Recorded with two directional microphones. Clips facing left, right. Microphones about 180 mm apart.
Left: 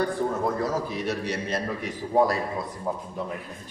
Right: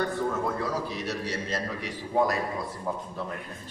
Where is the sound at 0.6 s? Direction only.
45° left (ahead or behind); by 1.9 s 60° left (ahead or behind).